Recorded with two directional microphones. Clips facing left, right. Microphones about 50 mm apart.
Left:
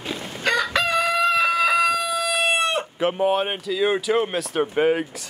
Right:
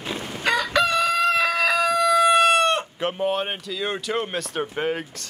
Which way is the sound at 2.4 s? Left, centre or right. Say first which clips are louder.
Right 3 dB; centre.